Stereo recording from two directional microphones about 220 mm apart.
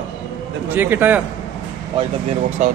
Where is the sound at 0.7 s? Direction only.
10° right (ahead or behind).